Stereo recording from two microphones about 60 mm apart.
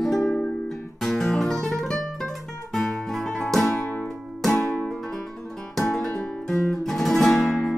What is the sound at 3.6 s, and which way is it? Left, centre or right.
Music, left.